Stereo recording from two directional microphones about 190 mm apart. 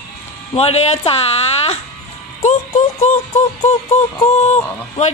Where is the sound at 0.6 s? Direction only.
35° left (ahead or behind).